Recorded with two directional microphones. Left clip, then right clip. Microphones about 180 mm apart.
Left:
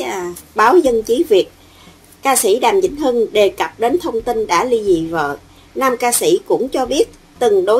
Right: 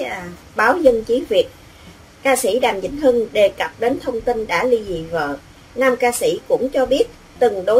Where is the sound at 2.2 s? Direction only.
45° left (ahead or behind).